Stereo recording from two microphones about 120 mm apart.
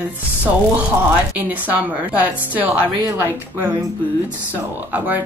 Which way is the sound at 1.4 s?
15° right (ahead or behind).